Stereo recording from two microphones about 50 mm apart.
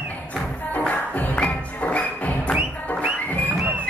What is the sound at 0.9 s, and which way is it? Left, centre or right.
Music, left.